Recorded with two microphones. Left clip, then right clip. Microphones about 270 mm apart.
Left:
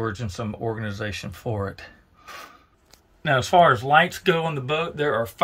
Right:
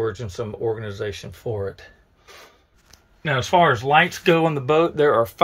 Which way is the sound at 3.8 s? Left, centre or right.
Centre.